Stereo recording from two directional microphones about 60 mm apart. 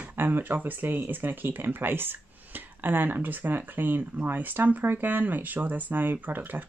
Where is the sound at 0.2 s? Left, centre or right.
Right.